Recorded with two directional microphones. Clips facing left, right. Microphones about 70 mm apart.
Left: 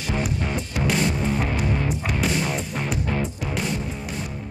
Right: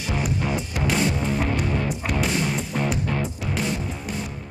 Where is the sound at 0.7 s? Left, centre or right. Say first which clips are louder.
Left 1 dB; centre.